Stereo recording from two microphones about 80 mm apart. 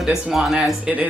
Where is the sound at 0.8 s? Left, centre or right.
Centre.